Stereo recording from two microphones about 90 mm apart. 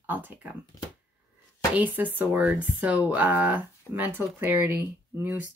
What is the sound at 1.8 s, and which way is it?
A woman's voice, 20° right (ahead or behind).